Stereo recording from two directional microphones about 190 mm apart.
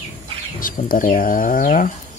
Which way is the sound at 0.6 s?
45° left (ahead or behind).